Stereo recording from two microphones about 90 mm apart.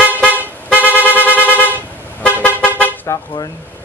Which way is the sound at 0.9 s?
20° left (ahead or behind).